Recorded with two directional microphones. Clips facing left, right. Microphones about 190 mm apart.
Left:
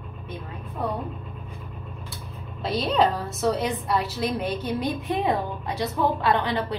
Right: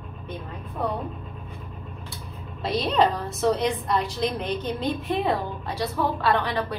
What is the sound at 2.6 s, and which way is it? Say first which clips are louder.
A woman's voice: even; centre (ahead or behind).